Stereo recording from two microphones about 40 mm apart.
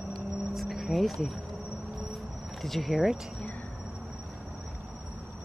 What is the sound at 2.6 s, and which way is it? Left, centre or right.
Speech, centre.